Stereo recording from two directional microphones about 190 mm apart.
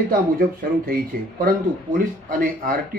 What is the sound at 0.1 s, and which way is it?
Speech, 50° right (ahead or behind).